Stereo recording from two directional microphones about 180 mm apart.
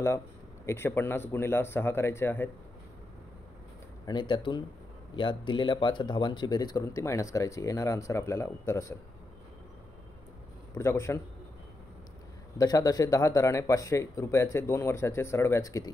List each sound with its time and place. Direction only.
0.7 s speech: 15° left (ahead or behind)
4.0 s speech: 25° left (ahead or behind)
10.7 s speech: 15° left (ahead or behind)
12.5 s speech: 20° left (ahead or behind)